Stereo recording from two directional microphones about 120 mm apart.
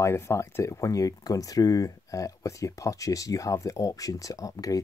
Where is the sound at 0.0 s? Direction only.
20° left (ahead or behind).